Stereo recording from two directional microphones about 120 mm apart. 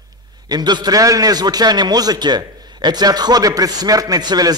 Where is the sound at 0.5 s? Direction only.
35° right (ahead or behind).